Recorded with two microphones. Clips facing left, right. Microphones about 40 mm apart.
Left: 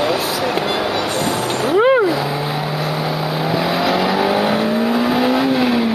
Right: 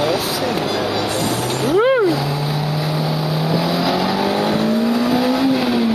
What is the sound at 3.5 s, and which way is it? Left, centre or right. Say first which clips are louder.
Vehicle: left 2 dB; left.